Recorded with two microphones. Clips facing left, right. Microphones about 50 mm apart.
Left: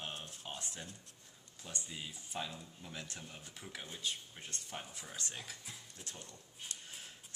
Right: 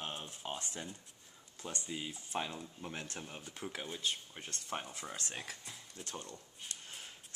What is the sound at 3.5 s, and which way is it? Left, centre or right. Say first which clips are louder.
Speech: right 6 dB; right.